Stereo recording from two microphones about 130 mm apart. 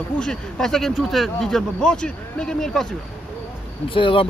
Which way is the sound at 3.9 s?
40° left (ahead or behind).